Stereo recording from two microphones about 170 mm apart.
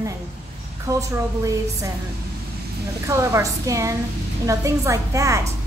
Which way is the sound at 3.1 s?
20° right (ahead or behind).